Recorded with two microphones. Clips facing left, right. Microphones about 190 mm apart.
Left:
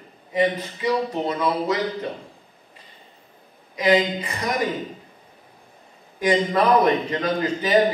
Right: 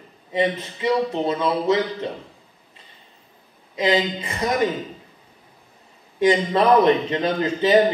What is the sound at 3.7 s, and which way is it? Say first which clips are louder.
Speech: left 1 dB; 25° right (ahead or behind).